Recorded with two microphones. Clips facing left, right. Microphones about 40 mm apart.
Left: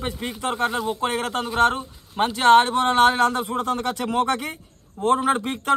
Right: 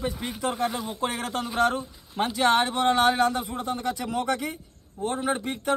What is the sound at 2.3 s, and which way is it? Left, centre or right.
Speech, left.